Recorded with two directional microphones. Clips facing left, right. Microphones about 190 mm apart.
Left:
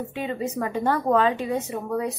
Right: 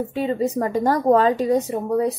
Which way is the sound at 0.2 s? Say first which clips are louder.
Right 6 dB; 35° right (ahead or behind).